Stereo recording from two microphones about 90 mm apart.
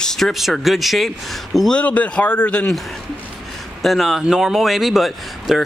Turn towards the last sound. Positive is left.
turn(degrees=0)  # may be behind; listen again after turning